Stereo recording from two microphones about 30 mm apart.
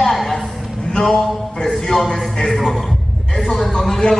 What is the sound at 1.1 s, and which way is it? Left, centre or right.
Speech, left.